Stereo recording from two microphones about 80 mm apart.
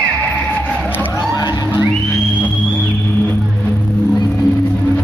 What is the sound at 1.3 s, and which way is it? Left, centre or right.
Music, left.